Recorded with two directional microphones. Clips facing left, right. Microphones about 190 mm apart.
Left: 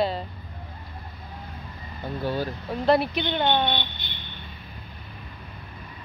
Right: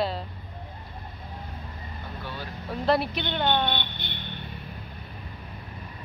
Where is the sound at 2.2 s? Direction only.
40° left (ahead or behind).